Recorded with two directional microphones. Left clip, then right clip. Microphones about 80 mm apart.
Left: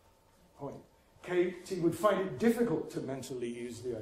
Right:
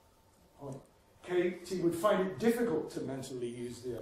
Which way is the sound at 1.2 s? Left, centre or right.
Centre.